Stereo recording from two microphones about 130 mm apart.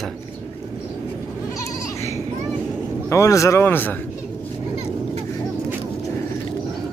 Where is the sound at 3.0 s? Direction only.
25° left (ahead or behind).